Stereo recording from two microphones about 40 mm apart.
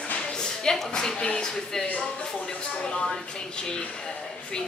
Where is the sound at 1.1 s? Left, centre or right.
Left.